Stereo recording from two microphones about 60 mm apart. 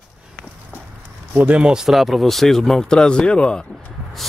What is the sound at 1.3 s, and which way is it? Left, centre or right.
Speech, right.